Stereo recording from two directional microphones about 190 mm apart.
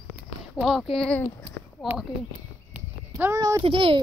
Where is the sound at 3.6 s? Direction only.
30° right (ahead or behind).